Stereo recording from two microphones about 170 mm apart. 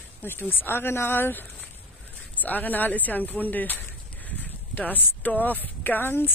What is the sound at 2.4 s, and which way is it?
Speech, 10° left (ahead or behind).